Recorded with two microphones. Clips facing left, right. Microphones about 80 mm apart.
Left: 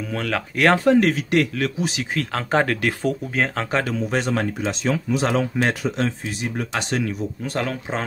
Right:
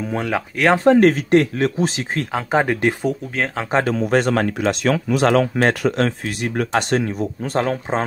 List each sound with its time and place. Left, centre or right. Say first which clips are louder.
0.1 s speech: right 3 dB; centre
0.8 s speech: right 4 dB; right
2.3 s speech: right 2 dB; centre
3.1 s speech: even; centre
3.9 s speech: right 5 dB; right
5.6 s speech: right 4 dB; right
7.0 s speech: right 3 dB; right